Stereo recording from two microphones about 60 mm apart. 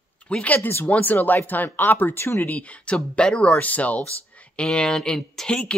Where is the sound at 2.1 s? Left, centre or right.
Left.